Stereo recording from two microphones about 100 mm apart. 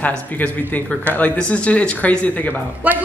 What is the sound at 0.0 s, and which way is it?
Speech, 15° left (ahead or behind).